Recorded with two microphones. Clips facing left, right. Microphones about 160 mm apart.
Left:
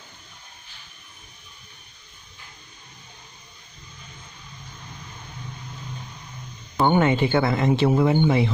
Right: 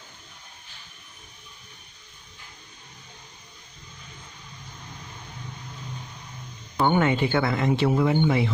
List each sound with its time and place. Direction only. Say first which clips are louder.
6.8 s speech: left 2 dB; 25° left (ahead or behind)